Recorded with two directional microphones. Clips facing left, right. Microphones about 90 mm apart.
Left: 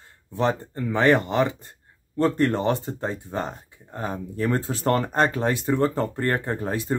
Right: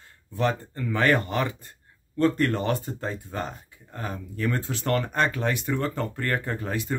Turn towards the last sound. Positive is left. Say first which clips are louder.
# left 3 dB
turn(degrees=30)  # may be behind; listen again after turning